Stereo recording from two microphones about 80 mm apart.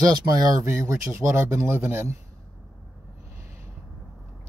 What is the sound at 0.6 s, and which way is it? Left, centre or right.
Speech, right.